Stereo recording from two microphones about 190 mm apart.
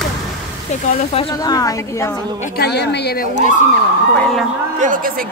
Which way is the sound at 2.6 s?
60° left (ahead or behind).